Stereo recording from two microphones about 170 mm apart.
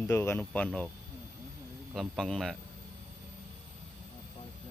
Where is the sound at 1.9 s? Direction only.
Centre (ahead or behind).